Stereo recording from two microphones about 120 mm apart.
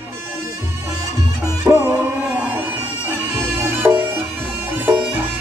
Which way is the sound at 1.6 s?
20° right (ahead or behind).